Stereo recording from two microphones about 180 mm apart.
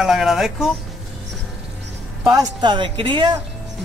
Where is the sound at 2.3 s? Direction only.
20° right (ahead or behind).